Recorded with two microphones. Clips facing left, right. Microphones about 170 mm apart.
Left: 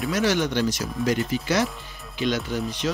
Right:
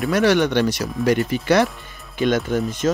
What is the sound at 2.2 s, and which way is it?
Speech, 50° right (ahead or behind).